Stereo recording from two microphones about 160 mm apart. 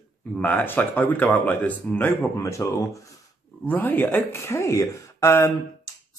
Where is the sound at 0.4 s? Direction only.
10° left (ahead or behind).